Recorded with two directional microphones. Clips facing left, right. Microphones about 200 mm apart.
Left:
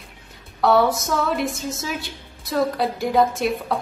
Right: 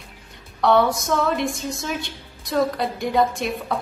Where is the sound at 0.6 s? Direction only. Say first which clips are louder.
Even; 5° left (ahead or behind).